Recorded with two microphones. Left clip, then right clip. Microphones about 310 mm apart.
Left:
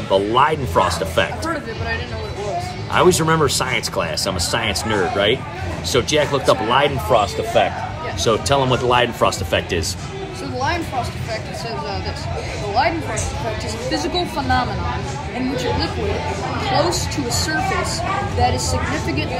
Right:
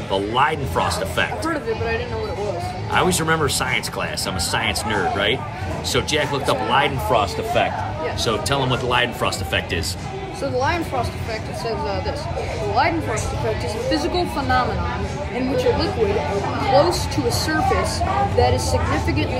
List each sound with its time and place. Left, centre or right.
0.1 s speech: centre
2.9 s speech: centre
12.8 s speech: centre
16.7 s speech: centre
18.4 s speech: centre